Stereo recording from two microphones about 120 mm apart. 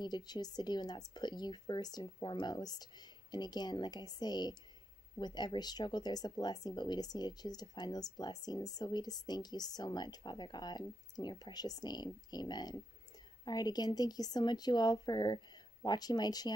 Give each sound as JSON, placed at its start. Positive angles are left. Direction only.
{"t": 0.0, "sound": "speech", "side_deg": 35}